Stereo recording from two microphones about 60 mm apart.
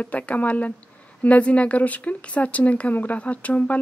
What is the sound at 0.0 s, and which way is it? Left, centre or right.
Speech, left.